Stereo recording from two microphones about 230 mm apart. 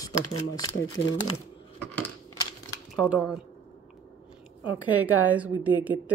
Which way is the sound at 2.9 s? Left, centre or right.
Centre.